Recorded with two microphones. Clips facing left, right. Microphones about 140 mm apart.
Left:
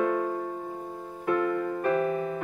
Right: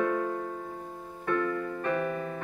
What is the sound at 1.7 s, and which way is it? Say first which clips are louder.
Music: left 4 dB; 35° left (ahead or behind).